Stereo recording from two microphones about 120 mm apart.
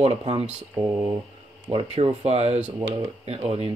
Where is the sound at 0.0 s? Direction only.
60° right (ahead or behind).